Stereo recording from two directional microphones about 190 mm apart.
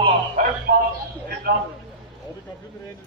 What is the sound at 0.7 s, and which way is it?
Speech, 45° right (ahead or behind).